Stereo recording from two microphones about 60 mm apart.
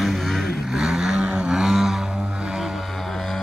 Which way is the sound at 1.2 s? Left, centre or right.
Centre.